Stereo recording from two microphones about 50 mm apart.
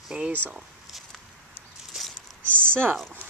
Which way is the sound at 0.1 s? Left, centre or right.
Right.